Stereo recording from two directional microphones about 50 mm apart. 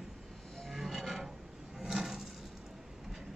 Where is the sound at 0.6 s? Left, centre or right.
Centre.